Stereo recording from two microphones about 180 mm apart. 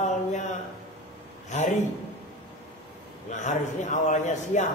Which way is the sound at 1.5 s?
40° left (ahead or behind).